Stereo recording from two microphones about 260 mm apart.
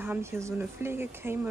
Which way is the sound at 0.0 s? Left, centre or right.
Centre.